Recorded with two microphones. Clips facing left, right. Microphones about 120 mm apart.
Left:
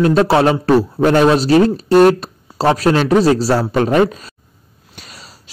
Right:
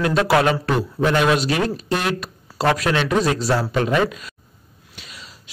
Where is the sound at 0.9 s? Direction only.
40° left (ahead or behind).